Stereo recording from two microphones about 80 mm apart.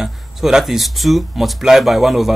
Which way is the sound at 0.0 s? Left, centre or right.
Centre.